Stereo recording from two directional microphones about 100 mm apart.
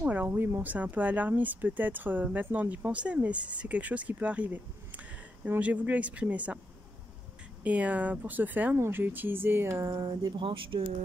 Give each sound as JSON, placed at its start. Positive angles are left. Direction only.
{"t": 0.0, "sound": "speech", "side_deg": -15}
{"t": 7.6, "sound": "speech", "side_deg": -15}
{"t": 10.2, "sound": "speech", "side_deg": -55}